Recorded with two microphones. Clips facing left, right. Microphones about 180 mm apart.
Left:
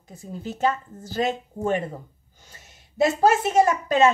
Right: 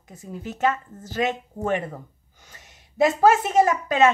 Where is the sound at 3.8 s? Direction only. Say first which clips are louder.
Even; 35° left (ahead or behind).